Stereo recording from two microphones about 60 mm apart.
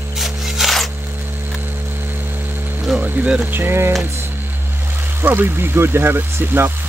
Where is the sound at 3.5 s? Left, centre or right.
Right.